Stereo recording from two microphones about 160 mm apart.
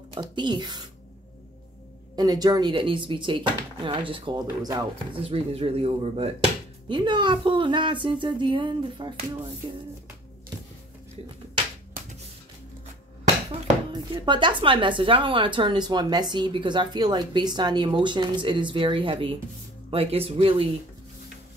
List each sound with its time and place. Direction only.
0.1 s speech: 30° right (ahead or behind)
2.1 s speech: 25° right (ahead or behind)
5.2 s speech: 35° right (ahead or behind)
6.9 s speech: 30° right (ahead or behind)
13.9 s speech: 30° right (ahead or behind)